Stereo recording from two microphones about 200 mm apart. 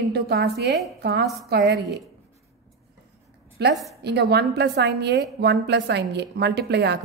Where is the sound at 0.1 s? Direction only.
55° right (ahead or behind).